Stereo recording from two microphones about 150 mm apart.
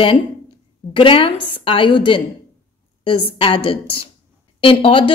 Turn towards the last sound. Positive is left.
turn(degrees=35)  # may be behind; listen again after turning